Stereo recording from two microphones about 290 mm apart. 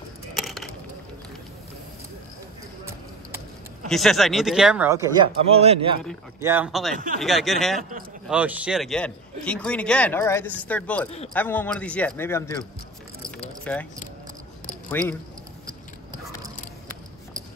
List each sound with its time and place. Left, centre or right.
0.3 s crushing: centre
3.9 s a man's voice: centre; by 5.9 s right
6.4 s a man's voice: centre
13.4 s a sound: centre
14.9 s speech: centre